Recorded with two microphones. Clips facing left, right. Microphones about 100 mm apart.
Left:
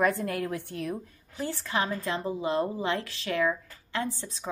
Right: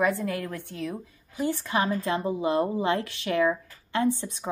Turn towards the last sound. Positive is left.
turn(degrees=-20)  # may be behind; listen again after turning